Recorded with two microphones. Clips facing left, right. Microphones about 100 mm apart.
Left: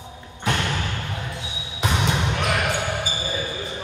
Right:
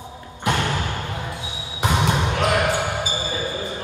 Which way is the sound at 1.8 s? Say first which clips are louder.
Right 3 dB; 15° right (ahead or behind).